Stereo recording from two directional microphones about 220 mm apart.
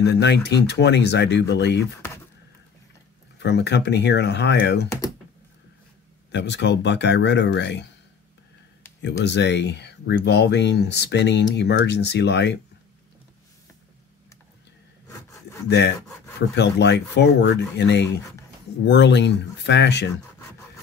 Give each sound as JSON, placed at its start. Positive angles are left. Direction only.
{"t": 0.0, "sound": "speech", "side_deg": 50}
{"t": 2.0, "sound": "a sound", "side_deg": 10}
{"t": 3.3, "sound": "speech", "side_deg": 50}
{"t": 6.3, "sound": "speech", "side_deg": 50}
{"t": 9.0, "sound": "speech", "side_deg": 50}
{"t": 15.0, "sound": "sawing", "side_deg": 15}
{"t": 16.3, "sound": "speech", "side_deg": 50}